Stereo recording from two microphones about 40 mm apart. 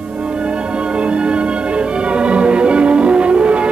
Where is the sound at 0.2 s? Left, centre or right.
Right.